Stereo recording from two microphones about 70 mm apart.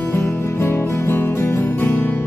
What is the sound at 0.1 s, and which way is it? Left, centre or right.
Music, left.